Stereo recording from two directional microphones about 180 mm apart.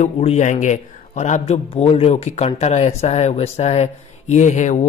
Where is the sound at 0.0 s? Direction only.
40° left (ahead or behind).